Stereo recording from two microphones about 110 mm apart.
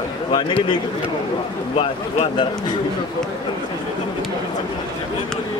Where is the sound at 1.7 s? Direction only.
65° left (ahead or behind).